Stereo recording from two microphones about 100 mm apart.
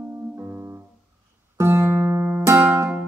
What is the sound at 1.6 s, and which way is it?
Music, 25° right (ahead or behind).